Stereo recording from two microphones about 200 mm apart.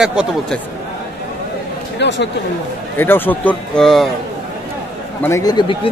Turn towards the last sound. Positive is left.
turn(degrees=25)  # may be behind; listen again after turning